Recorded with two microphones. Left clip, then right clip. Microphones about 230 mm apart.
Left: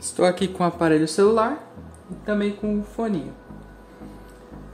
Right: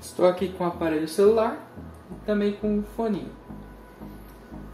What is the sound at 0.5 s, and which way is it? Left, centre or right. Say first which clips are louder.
Speech: left 6 dB; left.